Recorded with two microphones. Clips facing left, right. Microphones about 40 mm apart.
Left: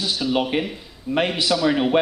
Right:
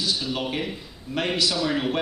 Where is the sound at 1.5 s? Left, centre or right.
Centre.